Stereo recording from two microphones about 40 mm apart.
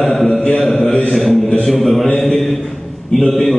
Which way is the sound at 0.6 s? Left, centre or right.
Centre.